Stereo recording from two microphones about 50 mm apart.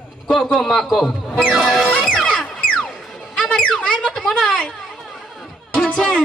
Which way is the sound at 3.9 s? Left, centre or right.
Centre.